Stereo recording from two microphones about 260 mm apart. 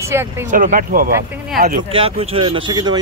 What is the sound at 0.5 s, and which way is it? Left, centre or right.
Speech, right.